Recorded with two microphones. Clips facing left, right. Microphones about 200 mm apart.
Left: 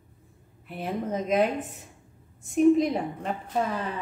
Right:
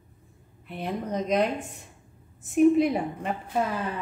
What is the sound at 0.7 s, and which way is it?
Speech, 5° left (ahead or behind).